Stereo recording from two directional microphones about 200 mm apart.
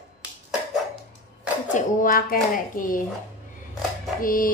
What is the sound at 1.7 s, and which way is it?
A woman's voice, 45° left (ahead or behind).